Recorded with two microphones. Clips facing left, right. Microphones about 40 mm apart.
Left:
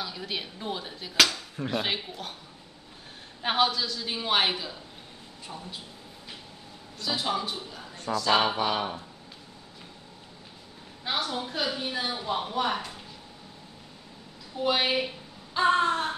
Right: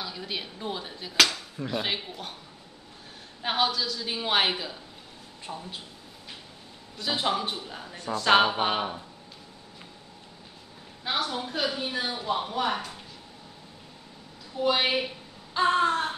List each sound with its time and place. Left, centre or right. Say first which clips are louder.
0.0 s a woman's voice: even; centre
3.4 s a woman's voice: left 1 dB; centre
4.0 s a woman's voice: even; centre
7.0 s a man's voice: right 2 dB; right
8.5 s a sound: right 1 dB; right
11.1 s a woman's voice: right 1 dB; centre
14.6 s a woman's voice: right 1 dB; centre